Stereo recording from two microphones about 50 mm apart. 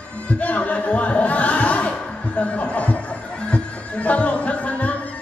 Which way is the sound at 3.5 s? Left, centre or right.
Left.